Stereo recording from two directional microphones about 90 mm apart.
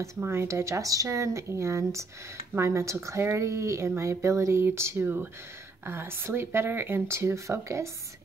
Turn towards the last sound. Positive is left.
turn(degrees=-35)  # may be behind; listen again after turning